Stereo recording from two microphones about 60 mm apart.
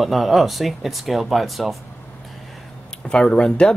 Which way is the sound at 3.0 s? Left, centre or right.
Centre.